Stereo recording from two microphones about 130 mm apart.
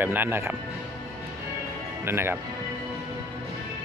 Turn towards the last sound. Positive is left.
turn(degrees=-15)  # may be behind; listen again after turning